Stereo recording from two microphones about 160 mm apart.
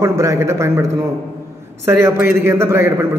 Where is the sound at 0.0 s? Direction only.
20° right (ahead or behind).